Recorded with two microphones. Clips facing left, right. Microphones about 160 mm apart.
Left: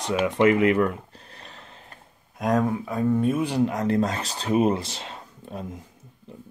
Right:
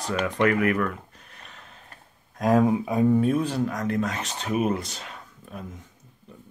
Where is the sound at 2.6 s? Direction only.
15° right (ahead or behind).